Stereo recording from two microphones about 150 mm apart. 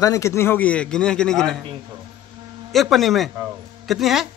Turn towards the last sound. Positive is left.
turn(degrees=0)  # may be behind; listen again after turning